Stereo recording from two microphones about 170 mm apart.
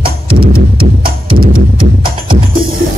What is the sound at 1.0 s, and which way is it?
Music, 60° right (ahead or behind).